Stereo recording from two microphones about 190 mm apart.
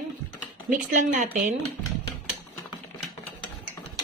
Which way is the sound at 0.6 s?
40° right (ahead or behind).